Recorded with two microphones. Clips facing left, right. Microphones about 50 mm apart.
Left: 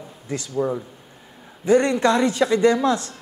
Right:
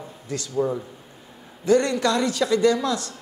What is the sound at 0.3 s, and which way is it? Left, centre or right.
Speech, left.